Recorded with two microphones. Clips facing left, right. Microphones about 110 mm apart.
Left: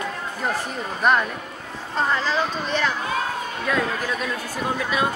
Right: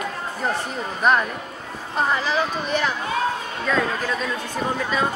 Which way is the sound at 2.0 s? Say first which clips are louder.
Right 1 dB; 15° right (ahead or behind).